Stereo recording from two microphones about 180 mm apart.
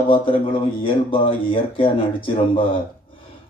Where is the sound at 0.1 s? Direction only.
30° left (ahead or behind).